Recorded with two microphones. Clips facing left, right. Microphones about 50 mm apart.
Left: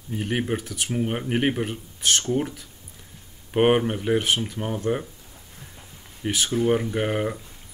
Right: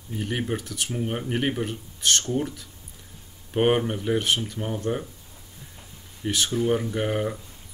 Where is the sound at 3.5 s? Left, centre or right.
Centre.